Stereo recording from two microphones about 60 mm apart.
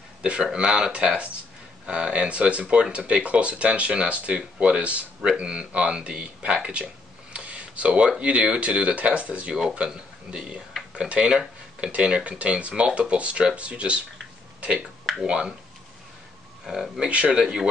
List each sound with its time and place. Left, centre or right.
0.2 s speech: centre
7.3 s a sound: centre
8.2 s speech: centre
16.6 s speech: centre